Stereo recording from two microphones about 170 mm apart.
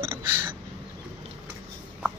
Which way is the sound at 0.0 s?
15° right (ahead or behind).